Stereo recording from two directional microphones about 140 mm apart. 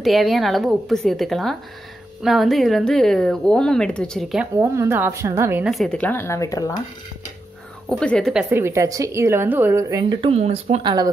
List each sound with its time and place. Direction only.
0.0 s speech: centre (ahead or behind)
4.6 s a woman's voice: 15° right (ahead or behind)
5.6 s speech: centre (ahead or behind); by 6.8 s 25° left (ahead or behind)
7.9 s speech: 5° left (ahead or behind)
8.5 s a woman's voice: 20° right (ahead or behind)
10.0 s speech: 45° right (ahead or behind)
10.8 s speech: 30° right (ahead or behind)